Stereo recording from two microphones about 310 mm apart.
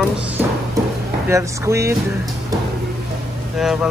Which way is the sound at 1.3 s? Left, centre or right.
Centre.